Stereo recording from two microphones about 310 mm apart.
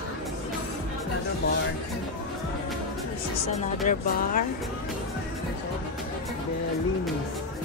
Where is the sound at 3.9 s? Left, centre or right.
Left.